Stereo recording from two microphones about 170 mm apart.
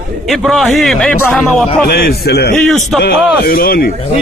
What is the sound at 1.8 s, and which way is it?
Speech, 65° left (ahead or behind).